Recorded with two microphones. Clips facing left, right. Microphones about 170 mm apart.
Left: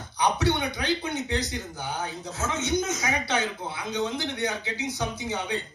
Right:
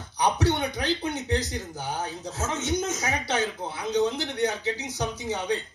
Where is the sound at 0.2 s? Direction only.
40° right (ahead or behind).